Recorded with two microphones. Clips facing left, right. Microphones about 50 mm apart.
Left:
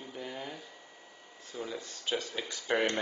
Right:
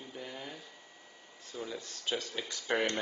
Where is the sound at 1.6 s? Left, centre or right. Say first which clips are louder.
Left 2 dB; left.